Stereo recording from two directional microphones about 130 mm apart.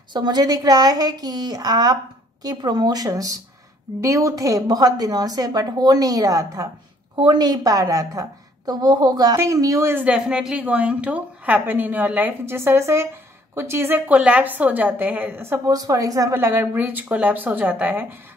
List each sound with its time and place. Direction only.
0.1 s a woman's voice: 35° right (ahead or behind); by 15.7 s 20° right (ahead or behind)
15.7 s a woman's voice: 30° right (ahead or behind)